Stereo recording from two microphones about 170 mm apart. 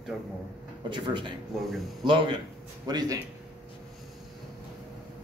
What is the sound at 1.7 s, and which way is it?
Speech, centre (ahead or behind).